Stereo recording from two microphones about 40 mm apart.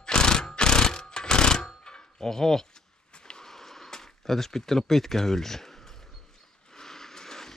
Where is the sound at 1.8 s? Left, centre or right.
Centre.